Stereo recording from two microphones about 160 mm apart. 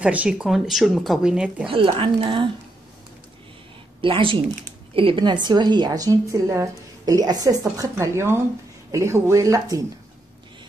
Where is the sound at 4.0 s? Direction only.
35° right (ahead or behind).